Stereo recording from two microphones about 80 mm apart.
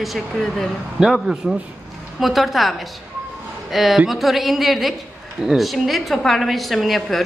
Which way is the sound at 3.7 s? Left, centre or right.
Centre.